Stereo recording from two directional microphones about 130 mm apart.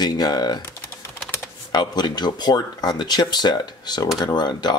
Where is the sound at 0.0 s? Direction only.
30° left (ahead or behind).